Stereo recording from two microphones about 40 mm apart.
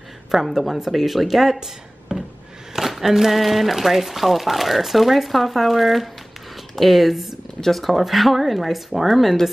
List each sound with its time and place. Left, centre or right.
0.3 s speech: centre
2.1 s a sound: right
2.7 s speech: centre